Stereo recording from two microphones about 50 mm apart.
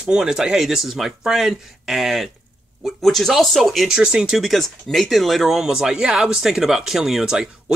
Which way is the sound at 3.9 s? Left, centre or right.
Centre.